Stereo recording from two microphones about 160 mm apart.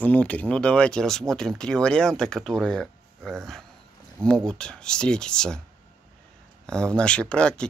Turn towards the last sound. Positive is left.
turn(degrees=5)  # may be behind; listen again after turning